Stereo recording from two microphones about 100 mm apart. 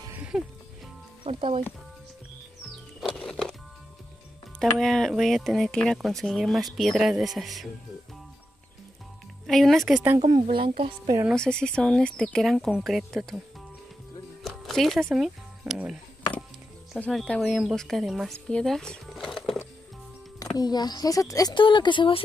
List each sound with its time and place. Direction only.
0.3 s music: centre (ahead or behind)
1.2 s speech: 60° right (ahead or behind)
3.2 s music: 5° left (ahead or behind)
4.6 s speech: 5° left (ahead or behind)
9.5 s speech: centre (ahead or behind)
10.2 s speech: 60° right (ahead or behind)
11.3 s speech: 10° left (ahead or behind)
14.4 s music: centre (ahead or behind)
15.1 s speech: 5° right (ahead or behind)
17.0 s speech: 5° left (ahead or behind)
18.5 s a sound: 5° left (ahead or behind)
20.5 s speech: 45° left (ahead or behind)
21.5 s a woman's voice: 50° left (ahead or behind)